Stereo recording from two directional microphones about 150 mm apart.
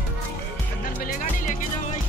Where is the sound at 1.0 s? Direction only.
65° left (ahead or behind).